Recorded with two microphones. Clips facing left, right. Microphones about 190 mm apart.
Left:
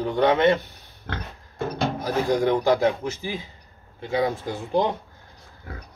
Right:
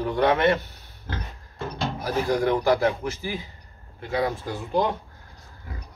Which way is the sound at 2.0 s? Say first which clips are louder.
Left 1 dB; 20° left (ahead or behind).